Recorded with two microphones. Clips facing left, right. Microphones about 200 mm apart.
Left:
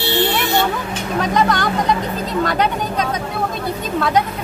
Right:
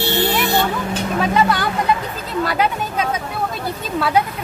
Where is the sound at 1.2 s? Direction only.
5° right (ahead or behind).